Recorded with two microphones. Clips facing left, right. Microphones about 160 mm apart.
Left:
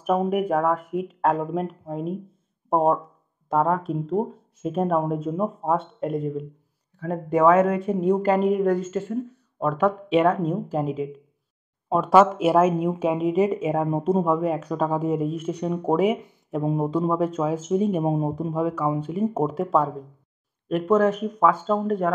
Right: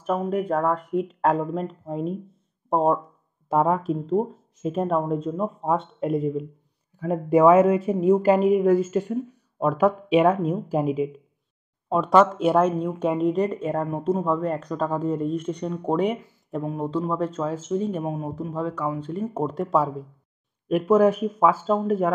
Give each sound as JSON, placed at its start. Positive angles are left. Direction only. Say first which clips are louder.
{"t": 0.0, "sound": "speech", "louder": "left 2 dB", "side_deg": 15}
{"t": 3.4, "sound": "a woman's voice", "louder": "right 1 dB", "side_deg": -10}
{"t": 11.9, "sound": "speech", "louder": "left 1 dB", "side_deg": 5}
{"t": 16.6, "sound": "speech", "louder": "left 4 dB", "side_deg": 15}
{"t": 18.0, "sound": "speech", "louder": "left 6 dB", "side_deg": 25}
{"t": 18.3, "sound": "a woman's voice", "louder": "left 3 dB", "side_deg": 15}